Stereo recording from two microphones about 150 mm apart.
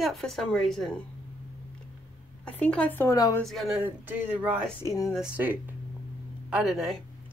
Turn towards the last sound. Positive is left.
turn(degrees=0)  # may be behind; listen again after turning